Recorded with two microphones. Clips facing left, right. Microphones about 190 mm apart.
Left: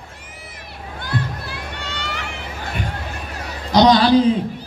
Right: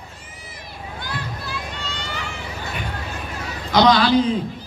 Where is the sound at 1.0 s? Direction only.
60° left (ahead or behind).